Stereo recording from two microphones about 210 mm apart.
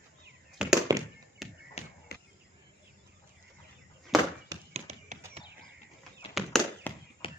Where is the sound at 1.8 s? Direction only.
30° left (ahead or behind).